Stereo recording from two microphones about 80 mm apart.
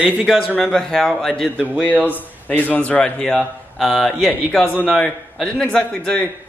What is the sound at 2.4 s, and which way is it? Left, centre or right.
A man's voice, left.